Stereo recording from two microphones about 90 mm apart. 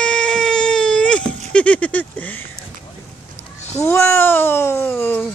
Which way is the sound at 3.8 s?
25° left (ahead or behind).